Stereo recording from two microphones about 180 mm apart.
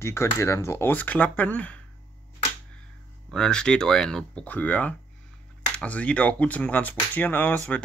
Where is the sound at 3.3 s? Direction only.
5° left (ahead or behind).